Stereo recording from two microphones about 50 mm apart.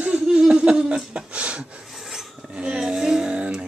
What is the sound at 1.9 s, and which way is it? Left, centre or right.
Filing, centre.